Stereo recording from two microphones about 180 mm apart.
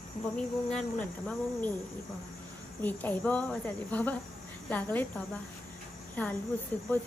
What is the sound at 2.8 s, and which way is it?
Speech, 10° left (ahead or behind).